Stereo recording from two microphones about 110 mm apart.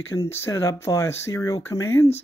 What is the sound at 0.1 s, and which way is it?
Speech, 25° left (ahead or behind).